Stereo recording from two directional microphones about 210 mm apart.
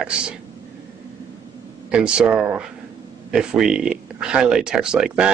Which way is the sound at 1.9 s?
5° right (ahead or behind).